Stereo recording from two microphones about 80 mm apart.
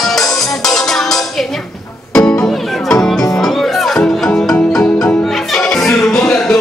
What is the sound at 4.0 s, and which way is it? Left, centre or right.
Music, centre.